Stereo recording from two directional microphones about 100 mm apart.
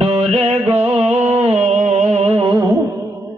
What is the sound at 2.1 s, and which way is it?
Music, 90° right.